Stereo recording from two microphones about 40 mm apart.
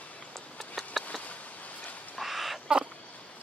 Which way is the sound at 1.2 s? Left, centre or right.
Left.